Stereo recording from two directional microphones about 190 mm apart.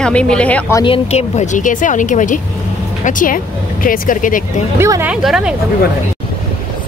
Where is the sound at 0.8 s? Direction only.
30° left (ahead or behind).